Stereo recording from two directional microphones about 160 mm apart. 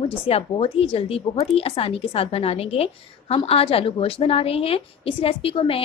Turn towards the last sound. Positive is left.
turn(degrees=35)  # may be behind; listen again after turning